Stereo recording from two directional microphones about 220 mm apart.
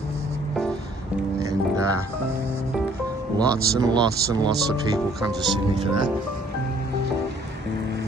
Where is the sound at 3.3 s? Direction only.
15° right (ahead or behind).